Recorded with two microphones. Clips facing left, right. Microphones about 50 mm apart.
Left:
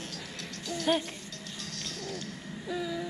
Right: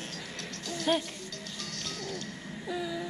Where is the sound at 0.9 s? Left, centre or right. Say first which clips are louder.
Even; centre.